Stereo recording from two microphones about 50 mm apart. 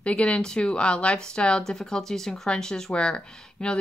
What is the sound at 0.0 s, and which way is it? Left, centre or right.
Speech, left.